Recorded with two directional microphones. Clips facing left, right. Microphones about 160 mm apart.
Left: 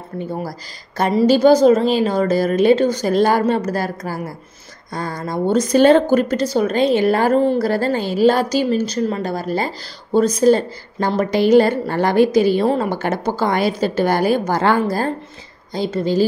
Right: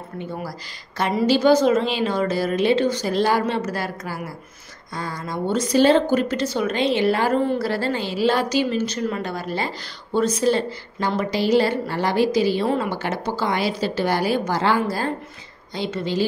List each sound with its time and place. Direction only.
0.2 s a woman's voice: 40° left (ahead or behind)
12.6 s a woman's voice: 40° left (ahead or behind)